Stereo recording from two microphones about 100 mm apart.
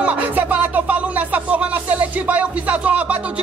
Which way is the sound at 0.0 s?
15° right (ahead or behind).